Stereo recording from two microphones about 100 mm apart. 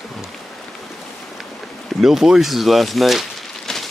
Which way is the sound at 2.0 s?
5° right (ahead or behind).